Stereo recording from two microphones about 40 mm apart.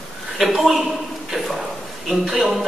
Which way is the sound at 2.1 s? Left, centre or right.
Centre.